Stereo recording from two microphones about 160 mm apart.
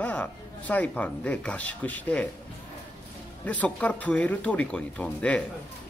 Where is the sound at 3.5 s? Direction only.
10° left (ahead or behind).